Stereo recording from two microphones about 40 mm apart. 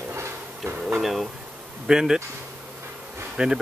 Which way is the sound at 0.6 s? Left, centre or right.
Right.